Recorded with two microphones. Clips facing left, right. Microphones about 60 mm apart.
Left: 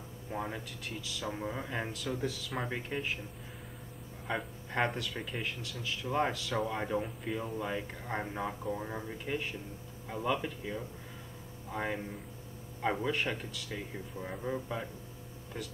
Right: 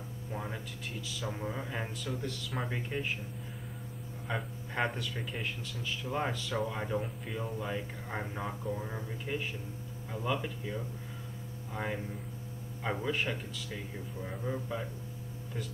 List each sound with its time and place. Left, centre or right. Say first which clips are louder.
0.3 s speech: left 3 dB; centre
0.8 s a man's voice: even; centre
4.3 s a man's voice: left 1 dB; centre